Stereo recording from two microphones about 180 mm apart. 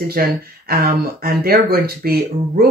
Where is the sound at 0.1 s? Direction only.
55° right (ahead or behind).